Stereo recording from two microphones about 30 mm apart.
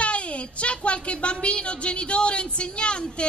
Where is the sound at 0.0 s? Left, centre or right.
Left.